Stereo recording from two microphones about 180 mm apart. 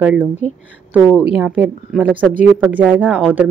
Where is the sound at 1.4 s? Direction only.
5° right (ahead or behind).